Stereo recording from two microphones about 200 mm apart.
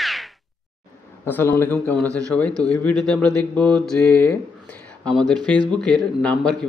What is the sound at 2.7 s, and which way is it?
A man's voice, 5° left (ahead or behind).